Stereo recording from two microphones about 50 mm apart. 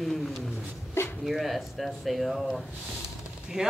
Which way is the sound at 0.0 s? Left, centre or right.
Centre.